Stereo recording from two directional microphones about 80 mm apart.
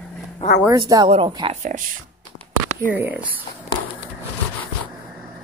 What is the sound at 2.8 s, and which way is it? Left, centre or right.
Speech, right.